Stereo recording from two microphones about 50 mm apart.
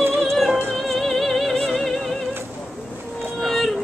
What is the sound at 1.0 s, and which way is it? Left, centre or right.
Music, centre.